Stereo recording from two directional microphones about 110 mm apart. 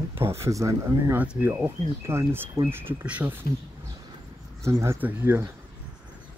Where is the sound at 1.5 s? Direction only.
25° right (ahead or behind).